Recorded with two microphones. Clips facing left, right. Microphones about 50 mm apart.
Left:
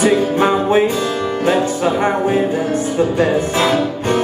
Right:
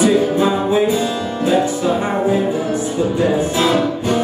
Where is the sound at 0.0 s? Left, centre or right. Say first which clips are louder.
Even; left.